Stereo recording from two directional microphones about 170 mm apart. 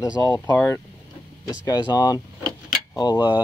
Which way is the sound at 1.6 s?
25° left (ahead or behind).